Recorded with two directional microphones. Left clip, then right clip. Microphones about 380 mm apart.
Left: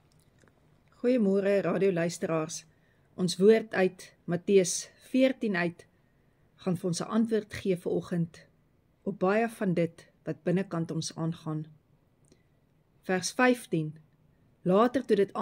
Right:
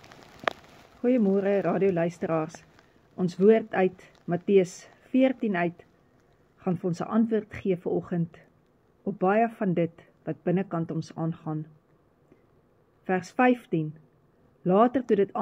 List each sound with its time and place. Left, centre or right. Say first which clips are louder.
1.0 s speech: right 2 dB; centre
13.0 s speech: right 2 dB; centre